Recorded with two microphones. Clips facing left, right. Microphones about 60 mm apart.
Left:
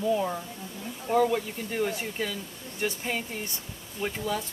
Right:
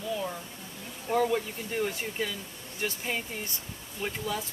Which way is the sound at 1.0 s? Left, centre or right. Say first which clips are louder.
Left 2 dB; centre.